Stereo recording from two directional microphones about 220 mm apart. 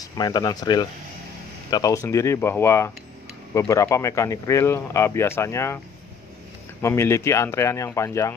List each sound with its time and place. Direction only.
0.0 s speech: 20° left (ahead or behind)
6.8 s speech: 10° left (ahead or behind)